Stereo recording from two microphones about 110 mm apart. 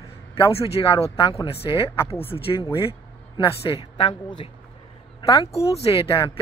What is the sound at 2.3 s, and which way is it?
Speech, 40° left (ahead or behind).